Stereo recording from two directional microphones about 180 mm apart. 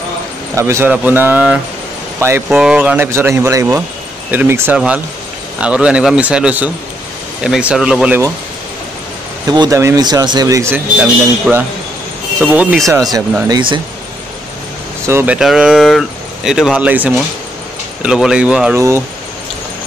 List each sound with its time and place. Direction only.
0.6 s speech: 15° right (ahead or behind)
9.5 s speech: 20° right (ahead or behind); by 12.8 s centre (ahead or behind)
12.8 s speech: 20° right (ahead or behind)
15.0 s speech: 15° right (ahead or behind)
15.3 s speech: 5° right (ahead or behind)